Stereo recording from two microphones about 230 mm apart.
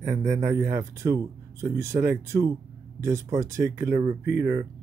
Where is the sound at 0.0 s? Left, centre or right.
Centre.